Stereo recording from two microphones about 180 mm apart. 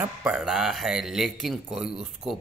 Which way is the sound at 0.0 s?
5° right (ahead or behind).